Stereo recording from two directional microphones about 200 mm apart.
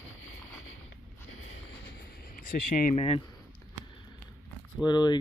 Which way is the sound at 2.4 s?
45° left (ahead or behind).